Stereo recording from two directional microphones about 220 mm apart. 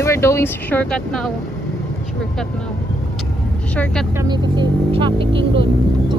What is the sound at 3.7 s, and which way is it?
Speech, 5° left (ahead or behind).